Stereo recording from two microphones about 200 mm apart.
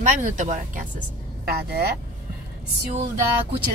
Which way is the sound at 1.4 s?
50° right (ahead or behind).